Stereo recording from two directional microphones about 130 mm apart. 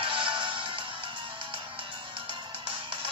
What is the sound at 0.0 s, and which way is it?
Music, 40° right (ahead or behind).